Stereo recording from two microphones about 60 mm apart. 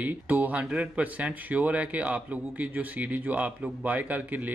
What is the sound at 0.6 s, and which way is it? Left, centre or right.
A man's voice, centre.